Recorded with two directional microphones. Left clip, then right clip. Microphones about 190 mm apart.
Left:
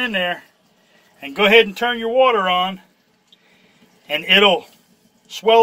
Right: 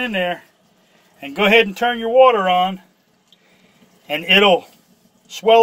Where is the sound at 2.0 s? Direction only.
35° right (ahead or behind).